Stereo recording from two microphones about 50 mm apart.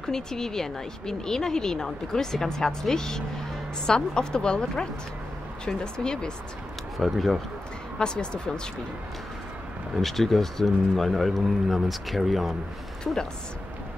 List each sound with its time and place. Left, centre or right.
0.0 s speech: centre
7.0 s speech: centre
8.0 s speech: centre
9.9 s speech: centre
13.0 s speech: centre